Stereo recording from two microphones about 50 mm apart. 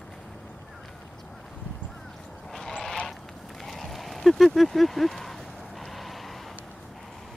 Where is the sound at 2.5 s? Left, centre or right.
Centre.